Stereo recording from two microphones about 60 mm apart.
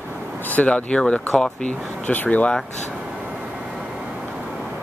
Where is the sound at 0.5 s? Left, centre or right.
Left.